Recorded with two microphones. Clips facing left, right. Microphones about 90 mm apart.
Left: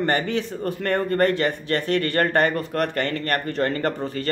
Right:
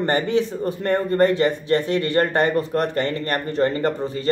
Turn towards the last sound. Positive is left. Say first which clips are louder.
# right 2 dB
turn(degrees=-20)  # may be behind; listen again after turning